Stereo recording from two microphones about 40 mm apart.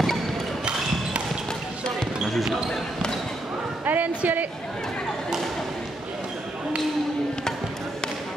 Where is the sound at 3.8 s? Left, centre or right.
Right.